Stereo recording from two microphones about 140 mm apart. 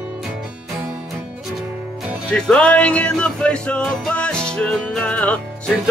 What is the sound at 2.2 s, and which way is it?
Music, 5° left (ahead or behind).